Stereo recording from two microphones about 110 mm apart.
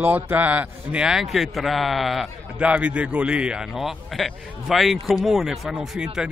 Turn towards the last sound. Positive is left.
turn(degrees=-5)  # may be behind; listen again after turning